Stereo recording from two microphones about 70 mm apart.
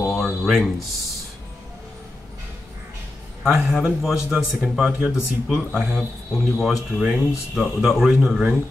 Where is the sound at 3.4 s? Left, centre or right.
Centre.